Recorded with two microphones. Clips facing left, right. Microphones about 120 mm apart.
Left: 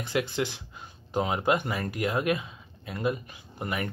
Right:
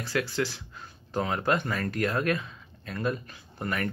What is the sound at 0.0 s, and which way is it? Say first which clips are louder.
Speech: even; 20° left (ahead or behind).